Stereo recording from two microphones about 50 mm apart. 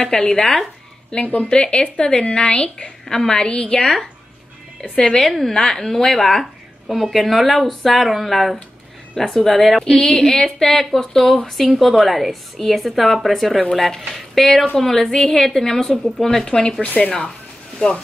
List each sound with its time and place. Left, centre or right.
0.3 s a woman's voice: centre
1.2 s a woman's voice: left
1.5 s a woman's voice: centre
3.8 s a woman's voice: centre
16.4 s a woman's voice: centre
16.8 s a woman's voice: left
17.7 s speech: centre